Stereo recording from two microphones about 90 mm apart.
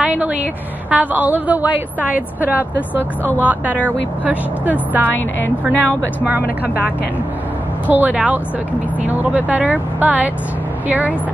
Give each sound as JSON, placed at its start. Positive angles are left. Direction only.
{"t": 0.0, "sound": "vehicle", "side_deg": -10}
{"t": 0.8, "sound": "a woman's voice", "side_deg": -15}
{"t": 7.9, "sound": "speech", "side_deg": -15}